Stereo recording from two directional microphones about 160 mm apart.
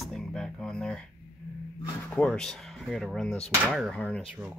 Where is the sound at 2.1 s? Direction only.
5° left (ahead or behind).